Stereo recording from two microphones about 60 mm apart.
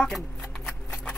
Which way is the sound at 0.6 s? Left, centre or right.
Centre.